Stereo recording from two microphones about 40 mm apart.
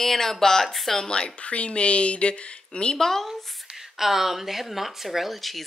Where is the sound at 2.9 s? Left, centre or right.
Centre.